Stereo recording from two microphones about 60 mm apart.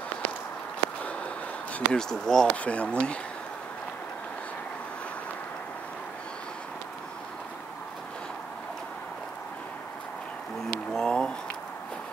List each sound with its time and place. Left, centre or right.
1.7 s speech: centre
2.5 s speech: left
10.9 s a sound: centre